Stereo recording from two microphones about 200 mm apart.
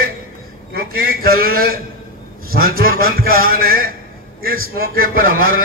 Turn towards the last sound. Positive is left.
turn(degrees=-45)  # may be behind; listen again after turning